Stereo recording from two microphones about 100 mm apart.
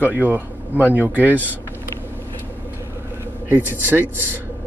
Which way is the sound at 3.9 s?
20° right (ahead or behind).